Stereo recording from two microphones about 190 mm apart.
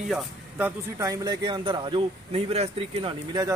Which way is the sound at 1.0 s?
20° right (ahead or behind).